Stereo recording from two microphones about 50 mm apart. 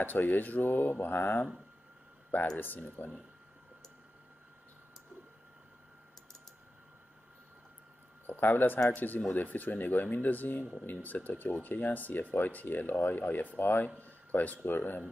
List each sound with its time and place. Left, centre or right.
0.0 s speech: left
2.5 s speech: left
8.3 s speech: left